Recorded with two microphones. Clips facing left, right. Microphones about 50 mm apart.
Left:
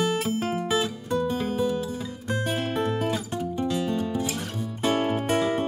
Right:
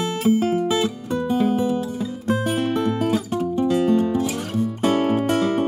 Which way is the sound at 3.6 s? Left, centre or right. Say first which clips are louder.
Right 9 dB; right.